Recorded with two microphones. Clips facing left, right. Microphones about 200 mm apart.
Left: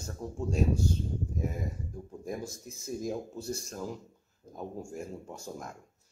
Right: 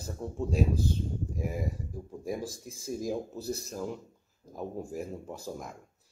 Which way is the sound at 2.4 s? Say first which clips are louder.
Right 2 dB; 30° right (ahead or behind).